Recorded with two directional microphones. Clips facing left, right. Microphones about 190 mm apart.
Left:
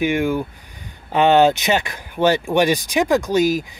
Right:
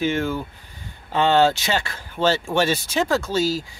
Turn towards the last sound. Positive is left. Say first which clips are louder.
# left 5 dB
turn(degrees=15)  # may be behind; listen again after turning